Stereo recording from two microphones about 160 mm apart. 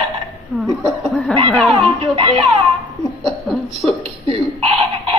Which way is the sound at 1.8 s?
35° right (ahead or behind).